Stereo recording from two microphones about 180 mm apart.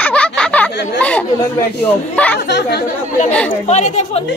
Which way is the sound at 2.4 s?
70° left (ahead or behind).